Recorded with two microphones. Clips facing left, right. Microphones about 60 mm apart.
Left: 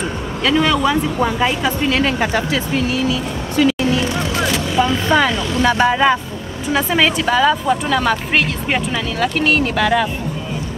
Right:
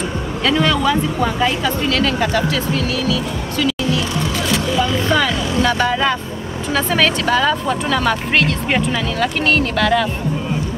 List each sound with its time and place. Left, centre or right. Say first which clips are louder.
0.5 s speech: left 1 dB; centre; by 4.0 s left
4.7 s vehicle: left 3 dB; left
6.7 s speech: left 1 dB; centre